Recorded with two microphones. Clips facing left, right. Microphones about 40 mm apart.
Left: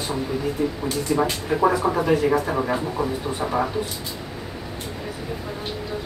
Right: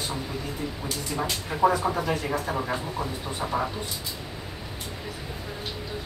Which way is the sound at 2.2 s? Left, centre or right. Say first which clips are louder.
Left 7 dB; centre.